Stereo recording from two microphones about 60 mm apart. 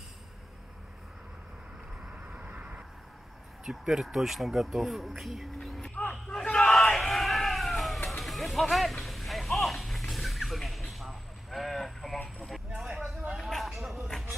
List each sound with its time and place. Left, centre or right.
2.0 s vehicle: right
3.6 s speech: centre
5.8 s vehicle: left
6.3 s crowd: centre
12.4 s vehicle: centre
13.4 s a sound: centre